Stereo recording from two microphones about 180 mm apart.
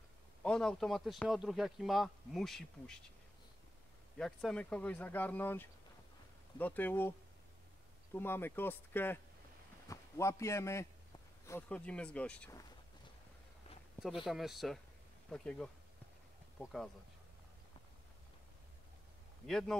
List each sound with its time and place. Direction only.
0.4 s a man's voice: 5° left (ahead or behind)
4.2 s speech: 5° left (ahead or behind)
14.0 s a man's voice: centre (ahead or behind)
19.4 s a man's voice: centre (ahead or behind)